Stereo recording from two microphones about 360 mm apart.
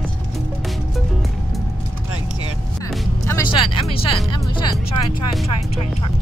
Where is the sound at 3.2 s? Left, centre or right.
Centre.